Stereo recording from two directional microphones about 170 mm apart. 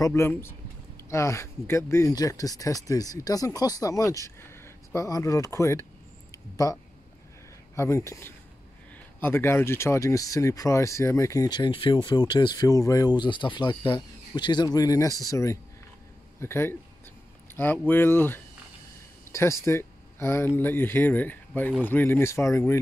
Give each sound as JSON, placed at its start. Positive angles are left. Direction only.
{"t": 0.0, "sound": "speech", "side_deg": 15}